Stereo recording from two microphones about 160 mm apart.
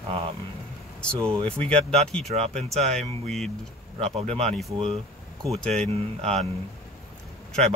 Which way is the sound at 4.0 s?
40° right (ahead or behind).